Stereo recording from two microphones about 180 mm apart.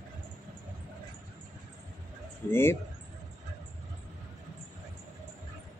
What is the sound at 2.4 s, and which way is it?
Speech, 10° left (ahead or behind).